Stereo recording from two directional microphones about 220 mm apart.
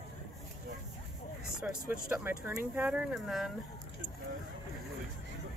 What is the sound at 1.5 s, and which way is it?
Speech, 5° right (ahead or behind).